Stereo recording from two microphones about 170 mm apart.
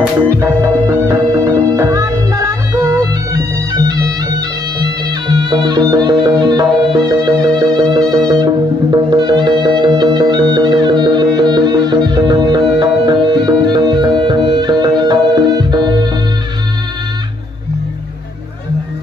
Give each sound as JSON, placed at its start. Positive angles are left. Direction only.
{"t": 0.4, "sound": "music", "side_deg": -15}
{"t": 3.3, "sound": "bagpipes", "side_deg": -20}
{"t": 5.3, "sound": "music", "side_deg": -25}